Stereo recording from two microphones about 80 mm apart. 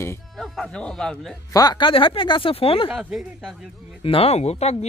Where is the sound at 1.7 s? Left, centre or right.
Left.